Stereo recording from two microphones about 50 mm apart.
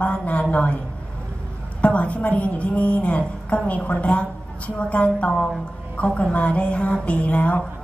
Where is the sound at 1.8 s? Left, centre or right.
Left.